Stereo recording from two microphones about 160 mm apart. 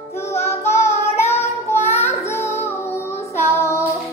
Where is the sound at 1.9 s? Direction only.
15° left (ahead or behind).